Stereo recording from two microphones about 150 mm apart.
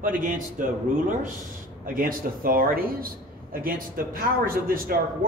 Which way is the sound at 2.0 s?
70° right (ahead or behind).